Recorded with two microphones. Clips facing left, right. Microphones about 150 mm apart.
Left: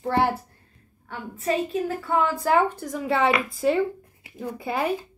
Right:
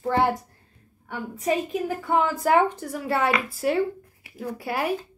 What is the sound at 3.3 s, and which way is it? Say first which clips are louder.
A woman's voice: left 2 dB; 5° right (ahead or behind).